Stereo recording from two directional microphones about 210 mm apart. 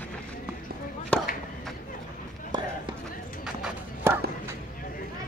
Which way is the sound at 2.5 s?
20° right (ahead or behind).